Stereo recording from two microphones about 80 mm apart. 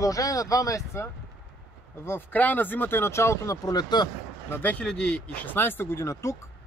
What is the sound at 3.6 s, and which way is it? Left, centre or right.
Speech, left.